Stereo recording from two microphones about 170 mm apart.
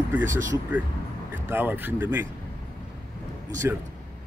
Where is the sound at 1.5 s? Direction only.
10° right (ahead or behind).